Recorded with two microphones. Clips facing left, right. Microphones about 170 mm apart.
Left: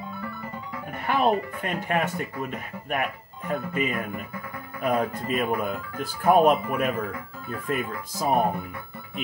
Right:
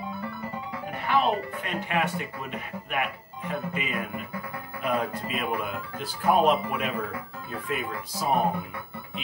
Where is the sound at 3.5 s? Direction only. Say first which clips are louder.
Left 4 dB; 45° left (ahead or behind).